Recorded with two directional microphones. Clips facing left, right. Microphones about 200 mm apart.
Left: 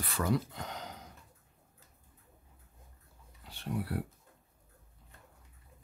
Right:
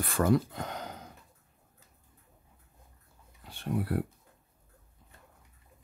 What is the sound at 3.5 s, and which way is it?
Speech, 50° right (ahead or behind).